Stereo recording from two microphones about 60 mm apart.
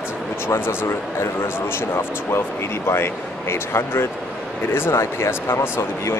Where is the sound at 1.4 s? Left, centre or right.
Left.